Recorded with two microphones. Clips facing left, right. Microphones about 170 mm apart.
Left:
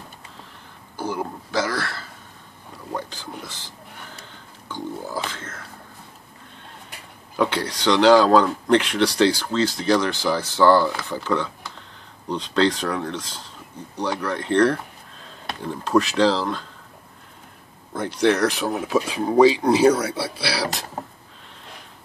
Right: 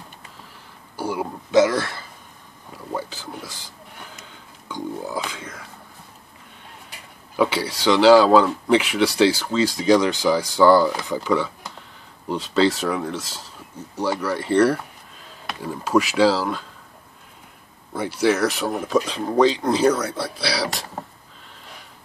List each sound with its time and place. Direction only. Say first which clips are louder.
0.9 s a sound: right 1 dB; 10° right (ahead or behind)
1.5 s speech: right 9 dB; 20° right (ahead or behind)
2.9 s speech: right 1 dB; 5° right (ahead or behind)
4.6 s speech: right 2 dB; 15° right (ahead or behind)
7.3 s speech: right 1 dB; 5° right (ahead or behind)
17.9 s speech: even; 5° right (ahead or behind)